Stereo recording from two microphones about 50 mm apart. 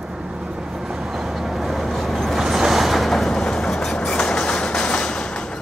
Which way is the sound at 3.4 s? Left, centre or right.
Centre.